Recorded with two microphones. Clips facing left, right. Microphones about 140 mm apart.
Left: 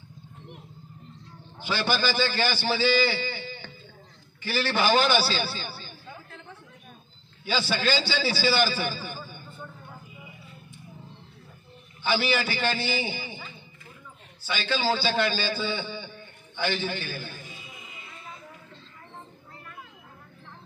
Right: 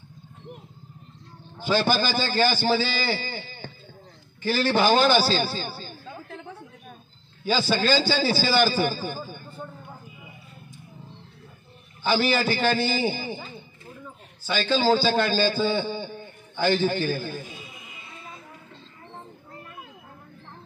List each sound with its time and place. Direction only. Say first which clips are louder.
1.6 s a man's voice: right 4 dB; 45° right (ahead or behind)
7.4 s a man's voice: right 4 dB; 45° right (ahead or behind)
12.0 s a man's voice: right 3 dB; 45° right (ahead or behind)